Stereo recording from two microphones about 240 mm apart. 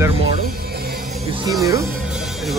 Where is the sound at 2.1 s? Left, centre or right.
Centre.